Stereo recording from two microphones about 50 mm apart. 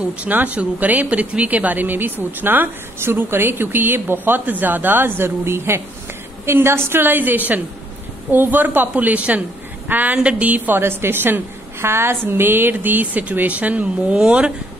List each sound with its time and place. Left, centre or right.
0.2 s a woman's voice: right
8.9 s a woman's voice: right
14.1 s a woman's voice: right